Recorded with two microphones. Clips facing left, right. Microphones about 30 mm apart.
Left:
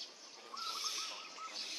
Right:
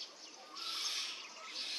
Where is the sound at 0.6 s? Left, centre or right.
Right.